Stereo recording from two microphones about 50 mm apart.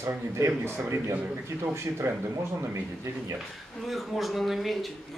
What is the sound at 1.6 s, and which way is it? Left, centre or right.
Speech, right.